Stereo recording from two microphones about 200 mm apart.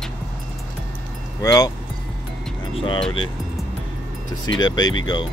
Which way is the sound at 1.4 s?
20° left (ahead or behind).